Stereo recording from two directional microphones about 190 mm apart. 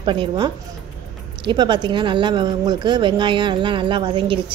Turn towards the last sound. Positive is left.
turn(degrees=-25)  # may be behind; listen again after turning